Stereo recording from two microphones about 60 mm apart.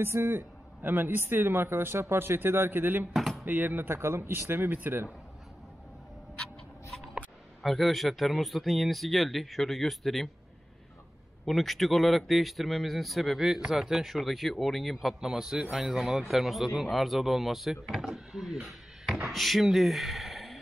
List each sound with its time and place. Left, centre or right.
0.0 s speech: right
3.1 s dishes: centre
3.4 s speech: right
7.6 s a man's voice: centre
11.4 s a man's voice: centre